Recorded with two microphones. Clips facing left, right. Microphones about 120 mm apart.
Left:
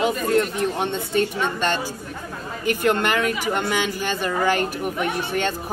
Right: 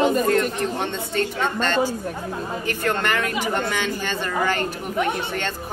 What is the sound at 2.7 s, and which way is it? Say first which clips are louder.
Speech: left 4 dB; 15° left (ahead or behind).